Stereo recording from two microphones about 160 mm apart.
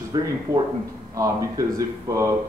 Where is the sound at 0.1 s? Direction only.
25° right (ahead or behind).